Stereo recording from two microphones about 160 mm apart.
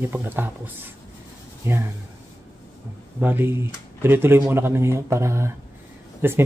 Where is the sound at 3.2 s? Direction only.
15° right (ahead or behind).